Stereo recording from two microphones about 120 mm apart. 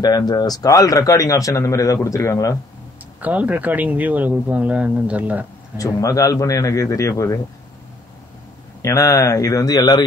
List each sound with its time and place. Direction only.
0.0 s a man's voice: 35° left (ahead or behind)
3.2 s speech: 15° right (ahead or behind)
5.8 s a man's voice: 30° left (ahead or behind)
8.8 s a man's voice: 25° left (ahead or behind)